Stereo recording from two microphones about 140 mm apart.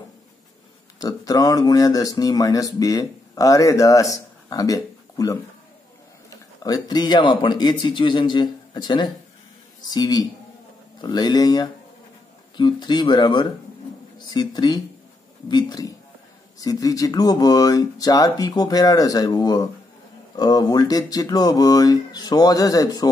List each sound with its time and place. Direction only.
0.9 s speech: 25° left (ahead or behind)